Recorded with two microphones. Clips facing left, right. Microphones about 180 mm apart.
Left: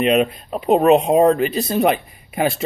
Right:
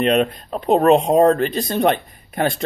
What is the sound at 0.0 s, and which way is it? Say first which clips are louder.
Speech: left 1 dB; 5° left (ahead or behind).